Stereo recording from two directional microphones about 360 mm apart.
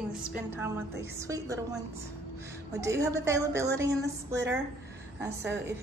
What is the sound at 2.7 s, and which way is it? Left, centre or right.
A woman's voice, centre.